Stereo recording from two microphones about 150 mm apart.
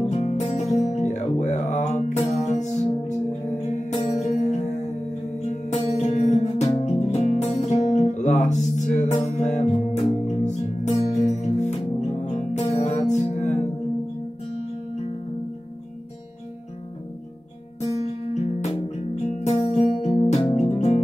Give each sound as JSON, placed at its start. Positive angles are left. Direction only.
{"t": 0.0, "sound": "music", "side_deg": 50}
{"t": 18.3, "sound": "music", "side_deg": 50}